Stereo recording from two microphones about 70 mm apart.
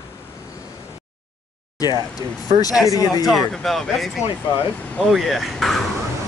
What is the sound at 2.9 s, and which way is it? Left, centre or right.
Speech, left.